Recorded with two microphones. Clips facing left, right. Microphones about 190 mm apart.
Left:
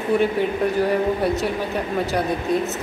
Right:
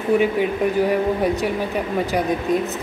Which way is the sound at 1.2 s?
15° right (ahead or behind).